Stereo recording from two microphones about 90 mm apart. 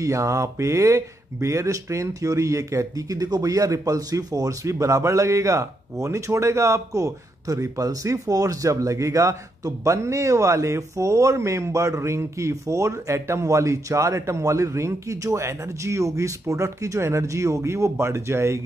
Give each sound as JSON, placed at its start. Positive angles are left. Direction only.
{"t": 0.0, "sound": "speech", "side_deg": -35}